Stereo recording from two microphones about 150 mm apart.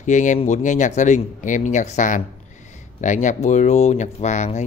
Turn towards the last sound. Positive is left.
turn(degrees=50)  # may be behind; listen again after turning